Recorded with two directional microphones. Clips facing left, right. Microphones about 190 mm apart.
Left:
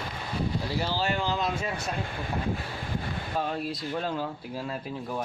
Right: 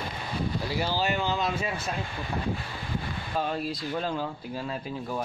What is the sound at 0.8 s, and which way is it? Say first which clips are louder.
Speech: right 2 dB; 5° right (ahead or behind).